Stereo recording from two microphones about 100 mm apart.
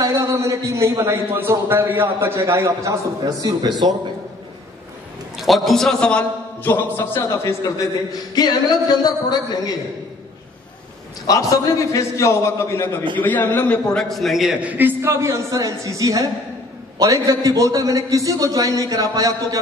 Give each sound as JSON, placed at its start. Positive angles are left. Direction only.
{"t": 0.0, "sound": "a man's voice", "side_deg": -35}
{"t": 5.4, "sound": "a man's voice", "side_deg": 0}
{"t": 6.6, "sound": "a man's voice", "side_deg": 20}
{"t": 8.1, "sound": "speech", "side_deg": 45}
{"t": 11.2, "sound": "a man's voice", "side_deg": 35}
{"t": 14.7, "sound": "a man's voice", "side_deg": -20}